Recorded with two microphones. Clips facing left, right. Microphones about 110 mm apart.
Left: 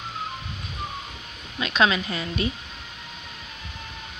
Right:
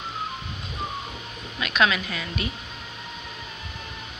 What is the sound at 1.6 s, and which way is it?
Speech, 30° left (ahead or behind).